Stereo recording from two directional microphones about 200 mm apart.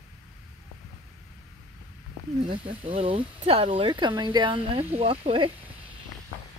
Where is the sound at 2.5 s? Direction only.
25° right (ahead or behind).